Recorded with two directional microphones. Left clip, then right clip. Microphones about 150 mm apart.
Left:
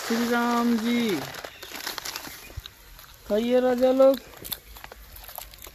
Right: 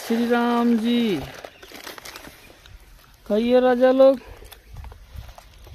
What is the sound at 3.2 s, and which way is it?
Speech, 85° right.